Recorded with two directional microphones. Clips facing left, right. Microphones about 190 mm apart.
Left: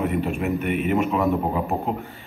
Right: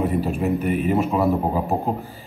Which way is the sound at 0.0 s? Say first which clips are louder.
Right 2 dB; 35° right (ahead or behind).